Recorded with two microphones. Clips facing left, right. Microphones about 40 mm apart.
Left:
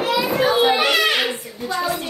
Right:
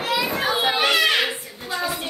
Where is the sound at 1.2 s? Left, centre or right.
Centre.